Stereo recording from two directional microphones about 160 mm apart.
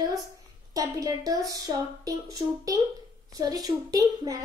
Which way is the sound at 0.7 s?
20° right (ahead or behind).